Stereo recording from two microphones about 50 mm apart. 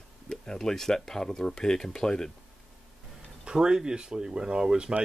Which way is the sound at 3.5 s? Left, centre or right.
Centre.